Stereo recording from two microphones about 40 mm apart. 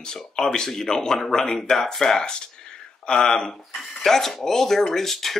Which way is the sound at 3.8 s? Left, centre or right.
Centre.